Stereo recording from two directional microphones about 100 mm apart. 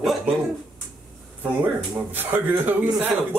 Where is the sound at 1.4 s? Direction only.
20° right (ahead or behind).